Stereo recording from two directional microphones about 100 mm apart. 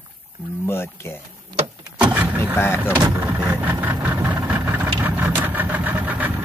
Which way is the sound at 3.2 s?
20° right (ahead or behind).